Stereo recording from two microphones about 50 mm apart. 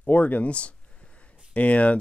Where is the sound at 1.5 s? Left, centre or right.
Left.